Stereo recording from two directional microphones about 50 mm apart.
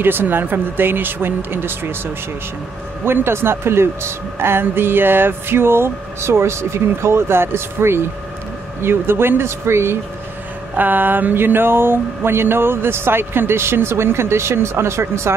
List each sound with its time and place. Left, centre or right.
0.0 s speech: right
3.1 s speech: right
10.8 s speech: right